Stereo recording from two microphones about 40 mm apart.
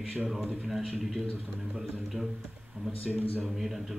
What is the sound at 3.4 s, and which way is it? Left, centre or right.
Speech, centre.